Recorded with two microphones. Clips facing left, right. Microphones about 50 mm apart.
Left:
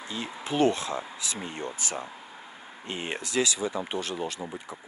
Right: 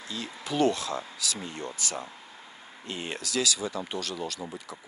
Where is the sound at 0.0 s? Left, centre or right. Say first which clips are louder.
Left 2 dB; left.